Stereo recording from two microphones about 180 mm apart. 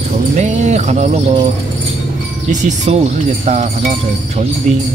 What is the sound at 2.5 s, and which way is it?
Speech, 40° right (ahead or behind).